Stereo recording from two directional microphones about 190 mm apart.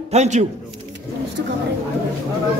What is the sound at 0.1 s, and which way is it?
Speech, 35° right (ahead or behind).